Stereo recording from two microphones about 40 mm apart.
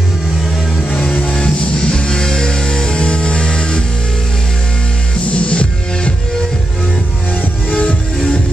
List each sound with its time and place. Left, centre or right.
1.3 s music: left
5.5 s music: left